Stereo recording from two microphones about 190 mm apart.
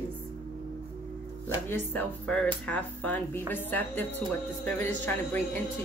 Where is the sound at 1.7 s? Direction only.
10° left (ahead or behind).